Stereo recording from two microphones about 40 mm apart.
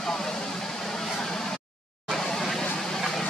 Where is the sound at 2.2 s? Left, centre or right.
Centre.